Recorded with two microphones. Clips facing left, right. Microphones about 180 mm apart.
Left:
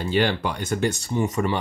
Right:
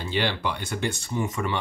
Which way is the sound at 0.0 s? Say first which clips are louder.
Left 5 dB; 45° left (ahead or behind).